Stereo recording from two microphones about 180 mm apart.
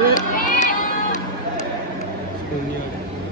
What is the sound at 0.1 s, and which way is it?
Run, 50° left (ahead or behind).